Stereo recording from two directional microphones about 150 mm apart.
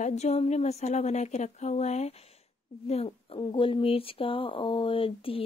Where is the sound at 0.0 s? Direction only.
45° left (ahead or behind).